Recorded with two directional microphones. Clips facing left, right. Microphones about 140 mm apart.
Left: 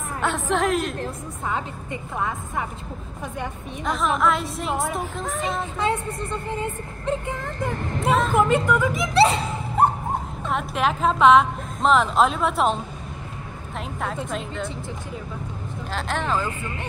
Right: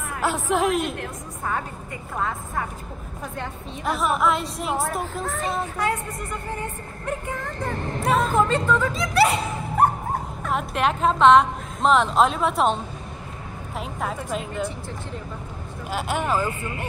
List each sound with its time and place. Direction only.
0.2 s a woman's voice: 5° right (ahead or behind)
1.5 s a woman's voice: 15° left (ahead or behind)
3.8 s a woman's voice: 5° right (ahead or behind)
5.2 s a woman's voice: 15° left (ahead or behind)
5.8 s speech: 25° left (ahead or behind)
10.5 s a woman's voice: centre (ahead or behind)
15.9 s speech: 10° right (ahead or behind)